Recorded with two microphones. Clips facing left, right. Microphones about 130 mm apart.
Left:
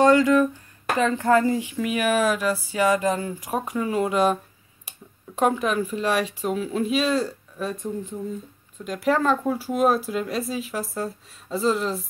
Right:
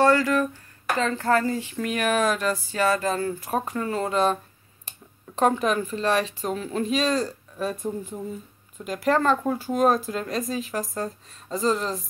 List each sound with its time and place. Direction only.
0.0 s speech: 20° left (ahead or behind)
7.5 s speech: 5° right (ahead or behind)
8.8 s speech: centre (ahead or behind)